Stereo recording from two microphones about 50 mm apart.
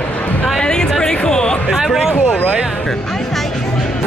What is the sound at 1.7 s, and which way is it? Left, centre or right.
Speech, centre.